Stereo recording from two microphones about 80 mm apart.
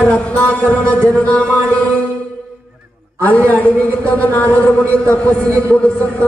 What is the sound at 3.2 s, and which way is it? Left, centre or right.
A man's voice, left.